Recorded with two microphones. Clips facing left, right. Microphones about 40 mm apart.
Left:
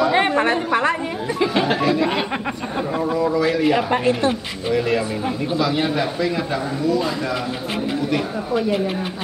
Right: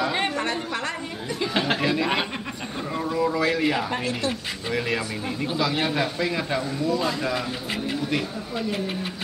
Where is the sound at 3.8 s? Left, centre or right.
Left.